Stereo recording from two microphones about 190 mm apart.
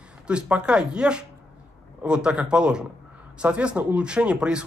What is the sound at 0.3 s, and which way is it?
Speech, 5° right (ahead or behind).